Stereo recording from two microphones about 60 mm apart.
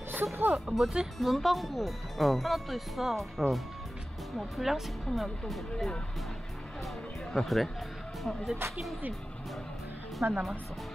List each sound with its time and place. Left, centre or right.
0.1 s speech: right
0.7 s speech: centre
7.3 s speech: centre
10.2 s speech: right